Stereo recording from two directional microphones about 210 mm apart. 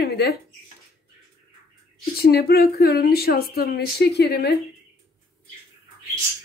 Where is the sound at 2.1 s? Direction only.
45° left (ahead or behind).